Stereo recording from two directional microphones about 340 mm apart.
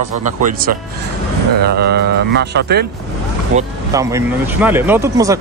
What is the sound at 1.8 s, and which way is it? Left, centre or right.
Speech, right.